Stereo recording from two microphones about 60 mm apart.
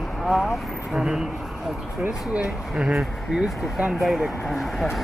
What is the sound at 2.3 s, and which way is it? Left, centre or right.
Speech, centre.